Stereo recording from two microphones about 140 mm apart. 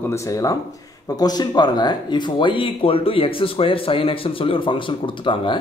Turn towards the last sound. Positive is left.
turn(degrees=35)  # may be behind; listen again after turning